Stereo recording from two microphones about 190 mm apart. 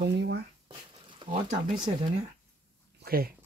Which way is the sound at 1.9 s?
30° right (ahead or behind).